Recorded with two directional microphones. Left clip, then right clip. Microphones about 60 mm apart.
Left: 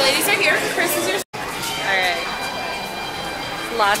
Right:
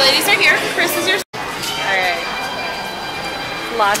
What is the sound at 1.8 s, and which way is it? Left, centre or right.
Music, centre.